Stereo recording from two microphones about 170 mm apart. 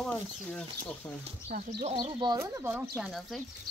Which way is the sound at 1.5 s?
55° right (ahead or behind).